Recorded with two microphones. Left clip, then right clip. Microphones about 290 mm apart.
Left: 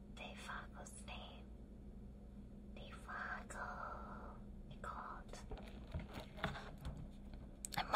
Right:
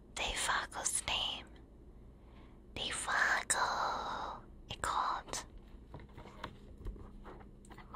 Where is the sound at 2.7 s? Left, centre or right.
Right.